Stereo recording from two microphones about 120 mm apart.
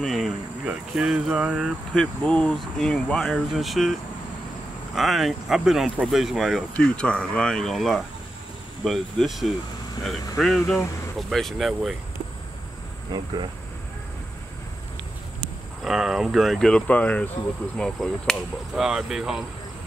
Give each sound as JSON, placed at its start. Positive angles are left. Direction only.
{"t": 0.0, "sound": "a sound", "side_deg": 0}
{"t": 0.7, "sound": "speech", "side_deg": -5}
{"t": 2.0, "sound": "speech", "side_deg": 10}
{"t": 13.1, "sound": "speech", "side_deg": -40}
{"t": 15.8, "sound": "speech", "side_deg": -5}